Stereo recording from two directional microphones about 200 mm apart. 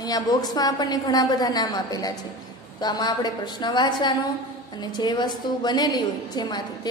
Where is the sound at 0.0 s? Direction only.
20° left (ahead or behind).